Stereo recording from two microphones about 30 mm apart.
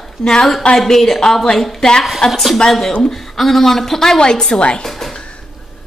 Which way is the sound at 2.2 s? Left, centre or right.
Left.